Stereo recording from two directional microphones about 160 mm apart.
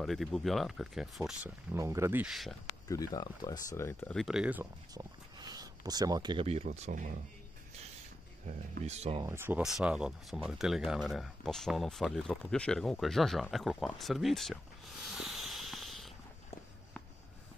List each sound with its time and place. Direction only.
0.0 s speech: centre (ahead or behind)
1.7 s speech: 20° right (ahead or behind)
2.2 s speech: centre (ahead or behind)
2.9 s speech: 25° left (ahead or behind)
4.1 s speech: centre (ahead or behind)
4.9 s speech: 25° right (ahead or behind)
6.4 s speech: 40° right (ahead or behind)
8.5 s speech: 45° right (ahead or behind)
9.2 s speech: 15° right (ahead or behind)
9.6 s speech: 5° right (ahead or behind)
15.0 s a sound: centre (ahead or behind)